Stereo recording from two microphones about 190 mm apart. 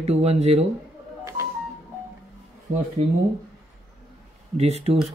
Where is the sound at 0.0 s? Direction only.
35° right (ahead or behind).